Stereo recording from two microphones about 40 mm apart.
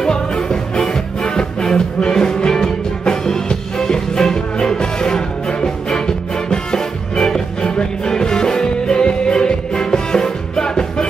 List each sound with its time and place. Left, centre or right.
0.0 s music: centre